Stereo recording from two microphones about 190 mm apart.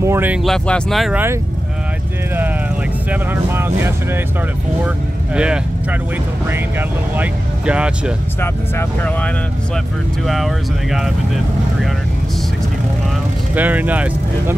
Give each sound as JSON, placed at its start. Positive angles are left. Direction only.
{"t": 0.0, "sound": "speech", "side_deg": -10}
{"t": 3.1, "sound": "speech", "side_deg": -10}
{"t": 7.2, "sound": "speech", "side_deg": -5}
{"t": 8.4, "sound": "speech", "side_deg": 10}
{"t": 10.2, "sound": "speech", "side_deg": 0}
{"t": 13.6, "sound": "speech", "side_deg": -10}